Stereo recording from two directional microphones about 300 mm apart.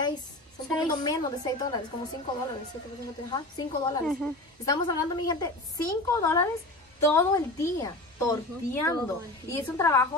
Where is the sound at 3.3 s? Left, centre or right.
Centre.